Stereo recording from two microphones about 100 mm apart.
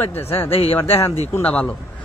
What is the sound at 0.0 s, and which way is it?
Speech, 20° left (ahead or behind).